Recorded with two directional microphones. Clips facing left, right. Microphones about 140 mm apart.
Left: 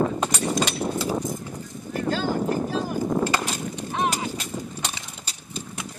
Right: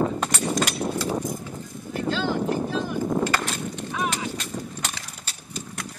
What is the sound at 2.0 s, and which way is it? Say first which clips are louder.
Boat: even; 45° left (ahead or behind).